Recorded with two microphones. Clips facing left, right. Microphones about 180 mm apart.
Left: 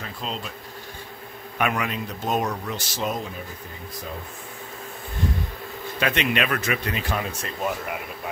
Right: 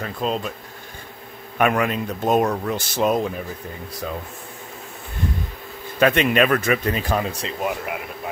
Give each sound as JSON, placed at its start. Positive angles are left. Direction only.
{"t": 0.2, "sound": "a man's voice", "side_deg": -50}
{"t": 1.6, "sound": "a man's voice", "side_deg": -50}
{"t": 5.9, "sound": "a man's voice", "side_deg": -45}
{"t": 7.6, "sound": "speech", "side_deg": -5}